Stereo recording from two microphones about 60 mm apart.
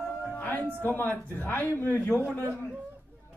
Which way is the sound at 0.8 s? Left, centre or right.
Left.